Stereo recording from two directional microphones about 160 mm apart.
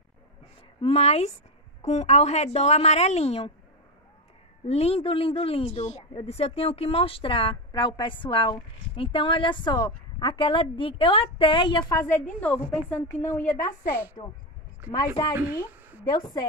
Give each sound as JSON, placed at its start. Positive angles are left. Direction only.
{"t": 0.7, "sound": "a woman's voice", "side_deg": 40}
{"t": 4.6, "sound": "a woman's voice", "side_deg": 40}
{"t": 12.4, "sound": "a woman's voice", "side_deg": 10}
{"t": 14.2, "sound": "a woman's voice", "side_deg": 40}
{"t": 14.9, "sound": "speech", "side_deg": 25}